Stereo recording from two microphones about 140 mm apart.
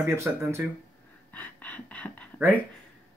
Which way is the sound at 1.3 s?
10° left (ahead or behind).